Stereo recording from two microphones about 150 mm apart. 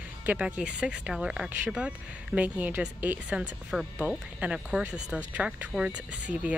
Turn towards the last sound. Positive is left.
turn(degrees=-5)  # may be behind; listen again after turning